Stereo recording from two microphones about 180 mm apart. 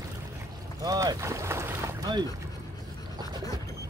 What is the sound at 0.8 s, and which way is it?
Boat, 20° right (ahead or behind).